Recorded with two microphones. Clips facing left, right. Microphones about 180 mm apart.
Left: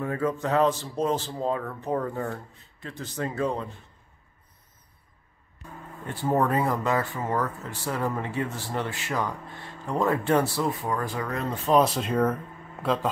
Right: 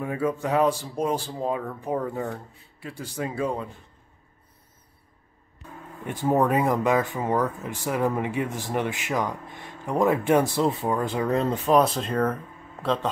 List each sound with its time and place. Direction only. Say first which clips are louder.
0.0 s speech: right 1 dB; 10° right (ahead or behind)
6.0 s speech: right 2 dB; 15° right (ahead or behind)
11.7 s speech: even; centre (ahead or behind)